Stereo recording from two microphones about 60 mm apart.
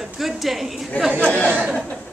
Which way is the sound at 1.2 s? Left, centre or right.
Left.